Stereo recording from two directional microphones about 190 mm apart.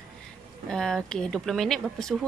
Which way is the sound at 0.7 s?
5° left (ahead or behind).